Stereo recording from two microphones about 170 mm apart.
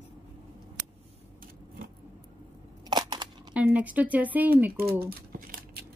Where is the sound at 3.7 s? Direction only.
10° right (ahead or behind).